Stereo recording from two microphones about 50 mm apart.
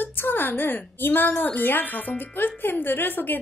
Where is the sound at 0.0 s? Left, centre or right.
Left.